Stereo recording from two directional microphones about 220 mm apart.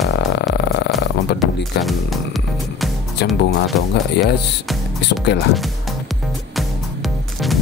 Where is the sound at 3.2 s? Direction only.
Centre (ahead or behind).